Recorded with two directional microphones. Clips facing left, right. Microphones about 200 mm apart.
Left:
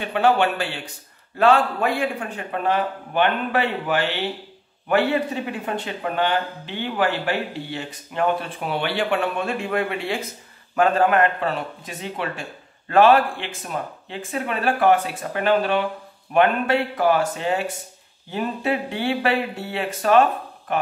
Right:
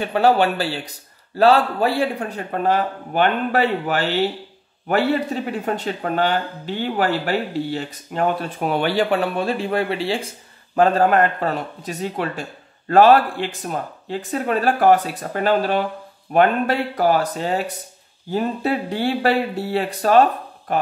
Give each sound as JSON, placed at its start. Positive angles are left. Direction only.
{"t": 0.0, "sound": "speech", "side_deg": -40}